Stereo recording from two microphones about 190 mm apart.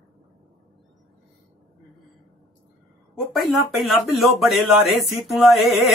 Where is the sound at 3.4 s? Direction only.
Centre (ahead or behind).